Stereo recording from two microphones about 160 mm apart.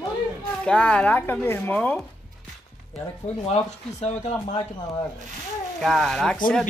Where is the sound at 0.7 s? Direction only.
5° left (ahead or behind).